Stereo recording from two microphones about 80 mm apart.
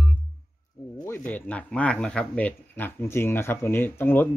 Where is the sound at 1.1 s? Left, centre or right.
Centre.